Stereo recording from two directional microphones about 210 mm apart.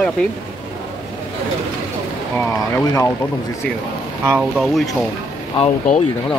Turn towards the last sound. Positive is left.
turn(degrees=30)  # may be behind; listen again after turning